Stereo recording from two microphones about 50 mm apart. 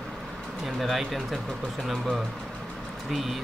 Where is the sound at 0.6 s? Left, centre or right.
Centre.